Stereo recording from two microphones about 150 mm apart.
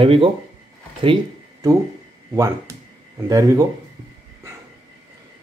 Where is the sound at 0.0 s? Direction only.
35° right (ahead or behind).